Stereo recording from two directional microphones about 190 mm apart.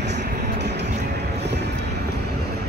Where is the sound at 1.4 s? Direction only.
60° right (ahead or behind).